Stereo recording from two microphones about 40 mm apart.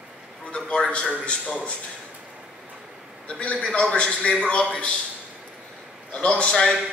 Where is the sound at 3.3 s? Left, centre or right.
Left.